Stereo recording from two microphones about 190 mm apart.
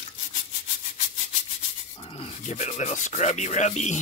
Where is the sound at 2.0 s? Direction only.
30° left (ahead or behind).